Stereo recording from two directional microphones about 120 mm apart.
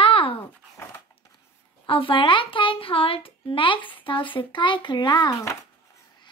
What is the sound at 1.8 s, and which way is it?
A child's voice, 45° left (ahead or behind).